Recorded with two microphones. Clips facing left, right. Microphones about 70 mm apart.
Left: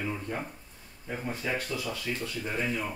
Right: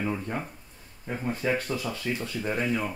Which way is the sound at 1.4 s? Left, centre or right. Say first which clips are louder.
Right 5 dB; right.